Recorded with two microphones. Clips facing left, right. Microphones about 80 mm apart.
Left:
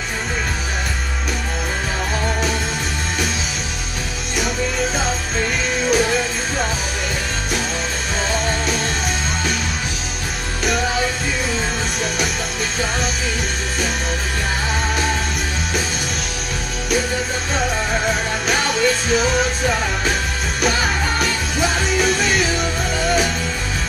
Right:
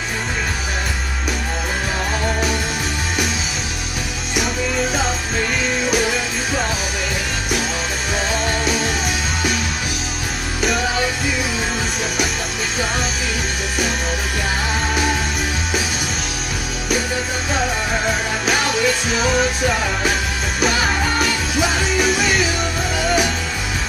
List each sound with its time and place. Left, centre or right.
5.9 s music: centre
8.5 s music: centre
17.6 s music: centre